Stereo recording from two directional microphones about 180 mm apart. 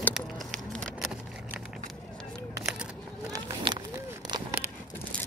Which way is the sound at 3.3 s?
25° right (ahead or behind).